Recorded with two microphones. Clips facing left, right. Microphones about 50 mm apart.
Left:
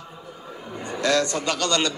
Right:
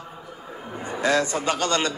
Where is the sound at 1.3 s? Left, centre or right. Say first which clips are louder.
Even; right.